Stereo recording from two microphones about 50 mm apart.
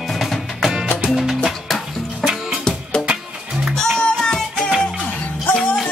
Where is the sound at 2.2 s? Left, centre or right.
Centre.